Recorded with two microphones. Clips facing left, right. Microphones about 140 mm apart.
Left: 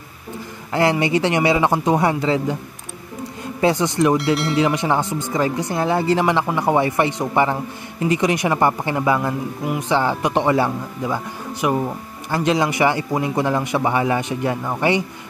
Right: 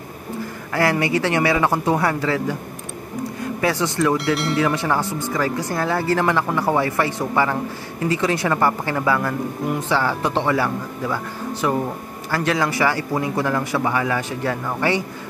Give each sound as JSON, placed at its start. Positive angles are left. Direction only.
{"t": 0.7, "sound": "speech", "side_deg": 20}
{"t": 3.6, "sound": "speech", "side_deg": 20}
{"t": 4.2, "sound": "speech", "side_deg": 0}
{"t": 4.6, "sound": "speech", "side_deg": 20}